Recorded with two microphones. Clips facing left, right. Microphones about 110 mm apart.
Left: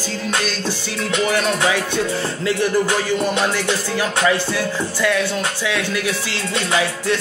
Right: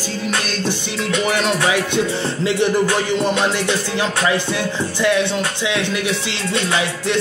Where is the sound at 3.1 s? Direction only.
20° right (ahead or behind).